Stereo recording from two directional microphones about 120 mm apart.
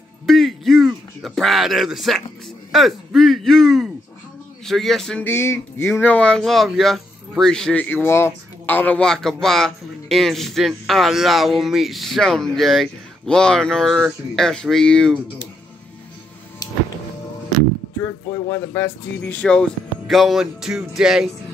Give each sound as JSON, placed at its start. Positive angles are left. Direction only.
{"t": 0.3, "sound": "speech", "side_deg": 0}
{"t": 5.2, "sound": "speech", "side_deg": 20}
{"t": 18.0, "sound": "speech", "side_deg": 20}